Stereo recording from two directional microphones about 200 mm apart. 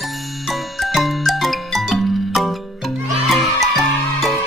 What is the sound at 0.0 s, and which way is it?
Music, centre (ahead or behind).